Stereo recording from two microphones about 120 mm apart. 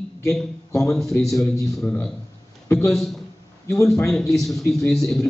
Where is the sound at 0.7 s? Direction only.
25° left (ahead or behind).